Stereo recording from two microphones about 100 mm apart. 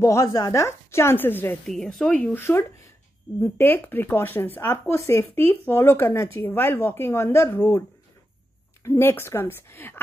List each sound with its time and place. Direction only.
0.0 s speech: 30° left (ahead or behind)
1.7 s a woman's voice: 5° left (ahead or behind); by 7.8 s 20° left (ahead or behind)
8.8 s speech: 25° left (ahead or behind)